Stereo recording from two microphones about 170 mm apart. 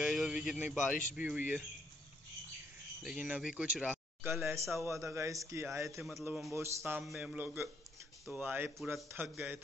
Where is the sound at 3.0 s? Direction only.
5° right (ahead or behind).